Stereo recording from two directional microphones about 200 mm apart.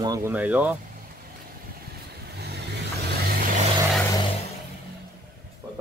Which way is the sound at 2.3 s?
55° right (ahead or behind).